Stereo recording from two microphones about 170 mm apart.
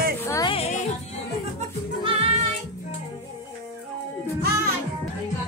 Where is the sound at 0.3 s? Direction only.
20° left (ahead or behind).